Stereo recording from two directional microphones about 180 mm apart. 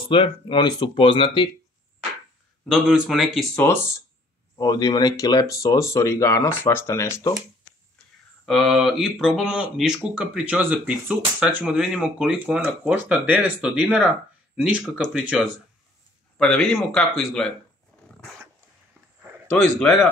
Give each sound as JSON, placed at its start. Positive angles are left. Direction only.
{"t": 0.1, "sound": "speech", "side_deg": 25}
{"t": 2.7, "sound": "speech", "side_deg": 0}
{"t": 4.6, "sound": "speech", "side_deg": 20}
{"t": 8.5, "sound": "speech", "side_deg": 0}
{"t": 16.3, "sound": "speech", "side_deg": 5}
{"t": 19.5, "sound": "speech", "side_deg": 5}